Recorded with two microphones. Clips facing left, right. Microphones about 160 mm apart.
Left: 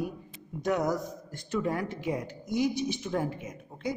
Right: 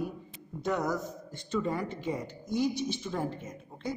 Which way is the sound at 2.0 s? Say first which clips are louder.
Left 2 dB; 10° left (ahead or behind).